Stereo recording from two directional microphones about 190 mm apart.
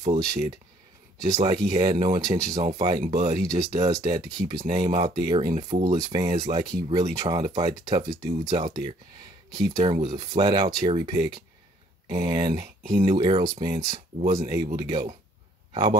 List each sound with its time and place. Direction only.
1.2 s speech: 20° right (ahead or behind)
3.1 s speech: 35° right (ahead or behind)
3.3 s speech: 20° right (ahead or behind)
13.8 s speech: 35° right (ahead or behind)
14.3 s a man's voice: 20° right (ahead or behind)